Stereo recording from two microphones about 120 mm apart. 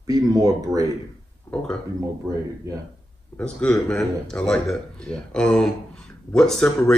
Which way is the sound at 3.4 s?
10° left (ahead or behind).